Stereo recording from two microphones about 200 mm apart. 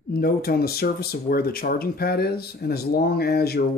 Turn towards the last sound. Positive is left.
turn(degrees=50)  # may be behind; listen again after turning